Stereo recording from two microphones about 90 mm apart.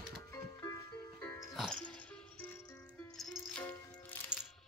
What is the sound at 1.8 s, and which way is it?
Music, 10° left (ahead or behind).